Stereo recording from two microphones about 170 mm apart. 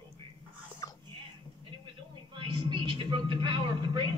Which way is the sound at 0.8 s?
20° left (ahead or behind).